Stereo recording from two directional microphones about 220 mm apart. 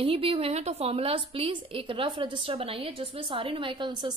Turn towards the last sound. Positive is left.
turn(degrees=-20)  # may be behind; listen again after turning